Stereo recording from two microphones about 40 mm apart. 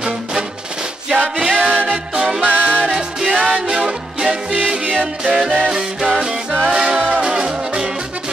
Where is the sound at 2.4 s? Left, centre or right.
Right.